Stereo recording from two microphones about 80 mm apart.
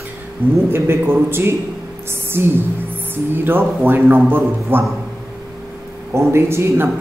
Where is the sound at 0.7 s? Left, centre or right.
Right.